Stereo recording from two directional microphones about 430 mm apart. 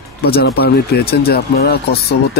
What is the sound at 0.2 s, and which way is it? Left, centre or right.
Speech, left.